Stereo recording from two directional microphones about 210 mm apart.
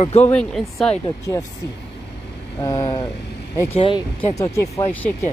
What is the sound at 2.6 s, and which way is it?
Speech, 15° left (ahead or behind).